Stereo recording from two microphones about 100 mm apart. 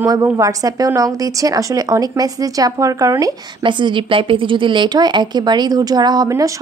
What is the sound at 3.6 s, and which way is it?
Speech, 55° right (ahead or behind).